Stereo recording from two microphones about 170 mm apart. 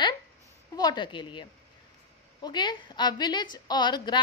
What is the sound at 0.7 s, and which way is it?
Speech, 25° left (ahead or behind).